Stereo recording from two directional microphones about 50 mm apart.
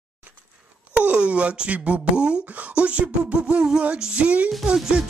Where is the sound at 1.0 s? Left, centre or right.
Right.